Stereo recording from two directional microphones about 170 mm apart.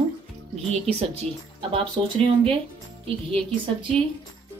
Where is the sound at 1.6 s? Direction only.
30° right (ahead or behind).